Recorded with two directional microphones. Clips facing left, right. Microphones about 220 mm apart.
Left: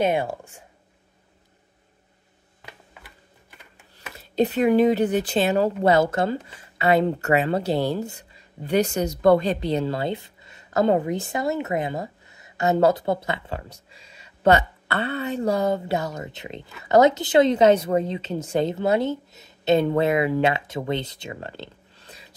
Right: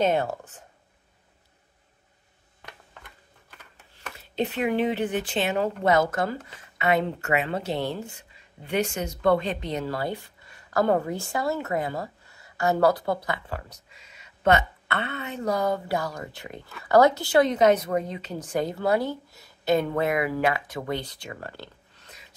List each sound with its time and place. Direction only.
0.0 s speech: 10° left (ahead or behind)
2.6 s a sound: 5° left (ahead or behind)
4.4 s speech: 40° left (ahead or behind)